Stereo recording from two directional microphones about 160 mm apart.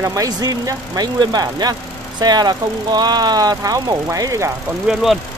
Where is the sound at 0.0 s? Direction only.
20° right (ahead or behind).